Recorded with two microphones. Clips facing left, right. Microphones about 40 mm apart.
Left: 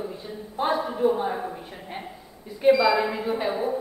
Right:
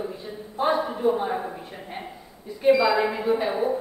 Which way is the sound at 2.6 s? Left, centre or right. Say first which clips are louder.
Even; centre.